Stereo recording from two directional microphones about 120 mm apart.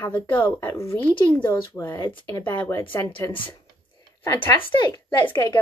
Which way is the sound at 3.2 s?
25° left (ahead or behind).